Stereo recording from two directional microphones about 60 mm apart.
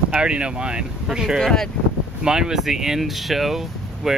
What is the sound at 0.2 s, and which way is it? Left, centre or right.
Speech, centre.